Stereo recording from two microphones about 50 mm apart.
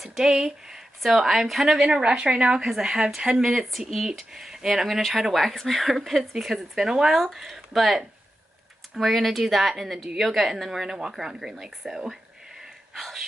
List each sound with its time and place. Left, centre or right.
0.0 s a woman's voice: centre
1.9 s a woman's voice: right
4.8 s a woman's voice: centre
12.9 s speech: centre